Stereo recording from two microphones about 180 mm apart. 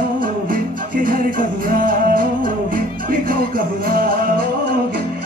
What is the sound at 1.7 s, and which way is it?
Music, 50° right (ahead or behind).